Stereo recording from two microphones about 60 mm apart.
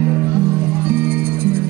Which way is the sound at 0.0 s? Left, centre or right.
Right.